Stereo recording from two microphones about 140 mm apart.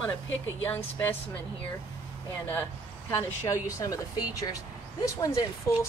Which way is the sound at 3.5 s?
25° left (ahead or behind).